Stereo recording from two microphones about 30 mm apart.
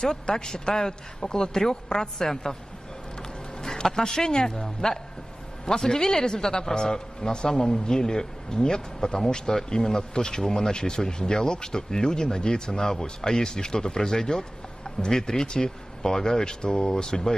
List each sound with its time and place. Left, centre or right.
0.0 s speech: left